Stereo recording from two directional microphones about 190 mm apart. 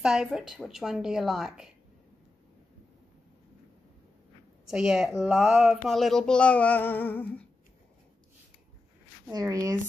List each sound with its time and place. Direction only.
0.0 s speech: 5° right (ahead or behind)
4.6 s speech: centre (ahead or behind)
9.3 s speech: 15° right (ahead or behind)